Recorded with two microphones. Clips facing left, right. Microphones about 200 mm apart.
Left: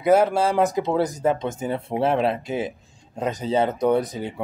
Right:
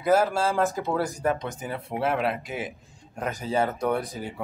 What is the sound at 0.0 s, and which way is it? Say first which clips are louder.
Speech: left 4 dB; 20° left (ahead or behind).